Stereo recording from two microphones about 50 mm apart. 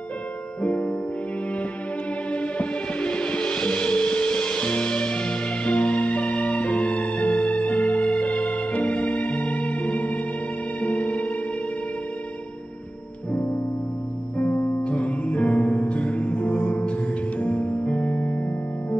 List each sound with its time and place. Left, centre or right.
0.6 s music: left
2.3 s music: left
13.3 s music: left